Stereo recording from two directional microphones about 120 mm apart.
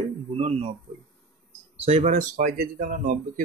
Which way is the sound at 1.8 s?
65° right (ahead or behind).